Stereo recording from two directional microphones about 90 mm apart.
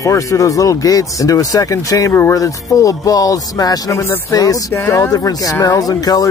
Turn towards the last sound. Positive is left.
turn(degrees=45)  # may be behind; listen again after turning